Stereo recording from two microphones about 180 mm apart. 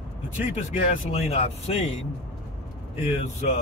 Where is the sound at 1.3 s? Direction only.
35° left (ahead or behind).